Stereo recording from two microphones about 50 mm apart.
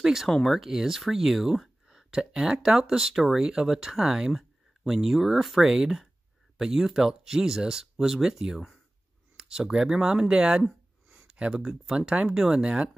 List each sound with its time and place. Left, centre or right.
0.0 s speech: centre
0.3 s speech: centre
0.6 s speech: centre
10.6 s a sound: centre
11.3 s speech: centre